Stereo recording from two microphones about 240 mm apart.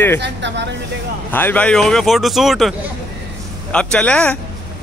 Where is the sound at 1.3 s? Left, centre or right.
Centre.